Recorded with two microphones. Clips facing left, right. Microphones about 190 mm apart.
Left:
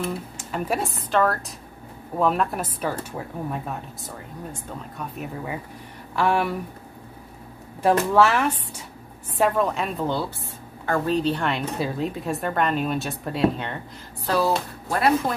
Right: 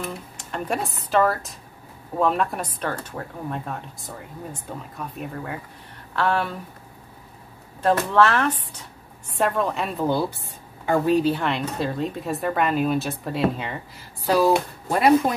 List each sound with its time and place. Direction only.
0.5 s speech: centre (ahead or behind)
7.8 s speech: 10° left (ahead or behind)
14.2 s speech: 15° right (ahead or behind)